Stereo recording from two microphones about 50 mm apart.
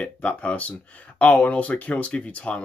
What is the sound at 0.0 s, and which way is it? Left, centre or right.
Speech, left.